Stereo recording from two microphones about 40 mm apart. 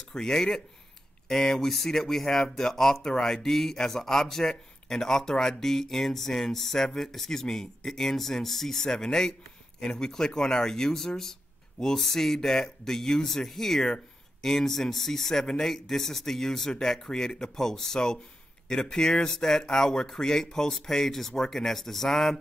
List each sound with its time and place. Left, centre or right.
0.1 s speech: centre